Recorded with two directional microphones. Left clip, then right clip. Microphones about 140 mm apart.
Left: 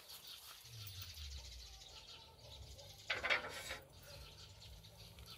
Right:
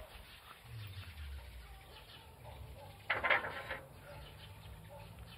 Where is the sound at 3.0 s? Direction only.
65° left (ahead or behind).